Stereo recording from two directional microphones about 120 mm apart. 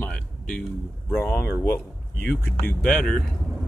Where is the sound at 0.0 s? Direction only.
10° left (ahead or behind).